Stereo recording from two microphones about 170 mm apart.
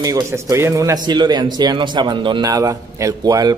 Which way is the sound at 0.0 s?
20° right (ahead or behind).